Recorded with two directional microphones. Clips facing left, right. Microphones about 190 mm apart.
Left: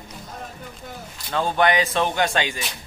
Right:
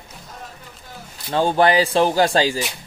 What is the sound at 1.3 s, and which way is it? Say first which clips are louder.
Speech: right 4 dB; 30° right (ahead or behind).